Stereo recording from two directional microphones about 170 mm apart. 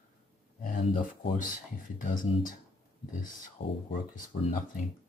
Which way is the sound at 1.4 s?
50° left (ahead or behind).